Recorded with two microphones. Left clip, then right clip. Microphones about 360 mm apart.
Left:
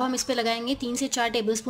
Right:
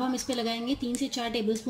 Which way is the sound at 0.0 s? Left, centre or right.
Centre.